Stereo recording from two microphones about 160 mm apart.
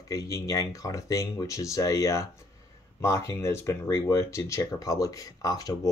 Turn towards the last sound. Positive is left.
turn(degrees=25)  # may be behind; listen again after turning